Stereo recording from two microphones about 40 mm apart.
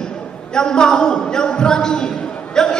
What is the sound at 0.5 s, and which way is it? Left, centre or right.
A man's voice, centre.